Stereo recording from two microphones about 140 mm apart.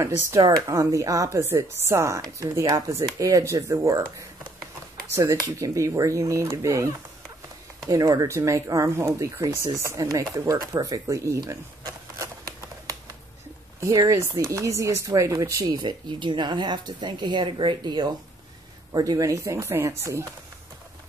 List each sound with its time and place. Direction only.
0.0 s speech: 20° right (ahead or behind)
13.7 s speech: 25° right (ahead or behind)